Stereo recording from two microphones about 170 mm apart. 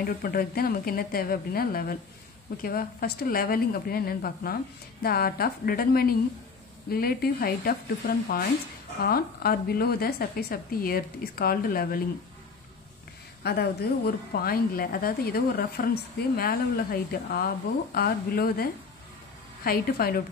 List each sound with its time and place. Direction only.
0.0 s a woman's voice: 60° left (ahead or behind)
13.4 s a woman's voice: 70° left (ahead or behind)